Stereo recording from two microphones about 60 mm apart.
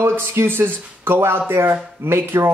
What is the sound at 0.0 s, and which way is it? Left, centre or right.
A woman's voice, right.